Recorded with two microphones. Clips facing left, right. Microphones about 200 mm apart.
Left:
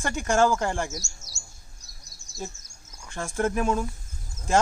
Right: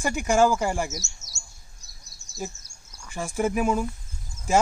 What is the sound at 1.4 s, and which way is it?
Bird, 70° right (ahead or behind).